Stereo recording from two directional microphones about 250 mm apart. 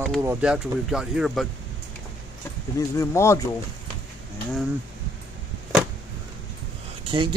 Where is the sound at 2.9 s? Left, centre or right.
Centre.